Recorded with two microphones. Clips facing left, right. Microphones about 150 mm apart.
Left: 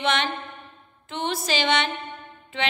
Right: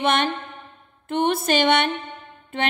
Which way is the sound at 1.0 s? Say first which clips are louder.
Right 7 dB; 55° right (ahead or behind).